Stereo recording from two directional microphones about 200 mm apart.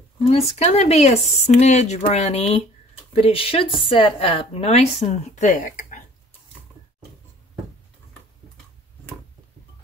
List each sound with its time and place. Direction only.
0.3 s a woman's voice: 30° left (ahead or behind)